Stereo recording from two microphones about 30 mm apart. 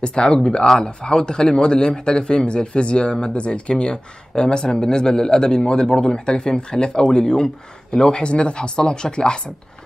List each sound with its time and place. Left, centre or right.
0.0 s a man's voice: left
8.2 s speech: left